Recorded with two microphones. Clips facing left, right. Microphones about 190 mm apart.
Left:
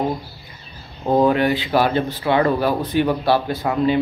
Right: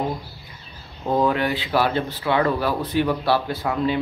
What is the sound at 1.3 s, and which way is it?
Speech, 60° left (ahead or behind).